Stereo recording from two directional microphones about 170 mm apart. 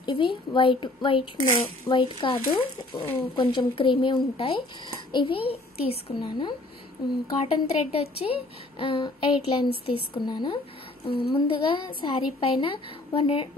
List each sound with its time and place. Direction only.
0.0 s a woman's voice: 30° left (ahead or behind)
11.1 s speech: 65° left (ahead or behind)
11.3 s speech: 30° left (ahead or behind)